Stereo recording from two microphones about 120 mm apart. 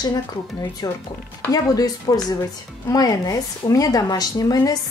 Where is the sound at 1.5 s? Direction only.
30° left (ahead or behind).